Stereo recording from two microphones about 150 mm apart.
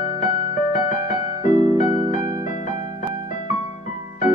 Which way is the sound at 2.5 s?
55° left (ahead or behind).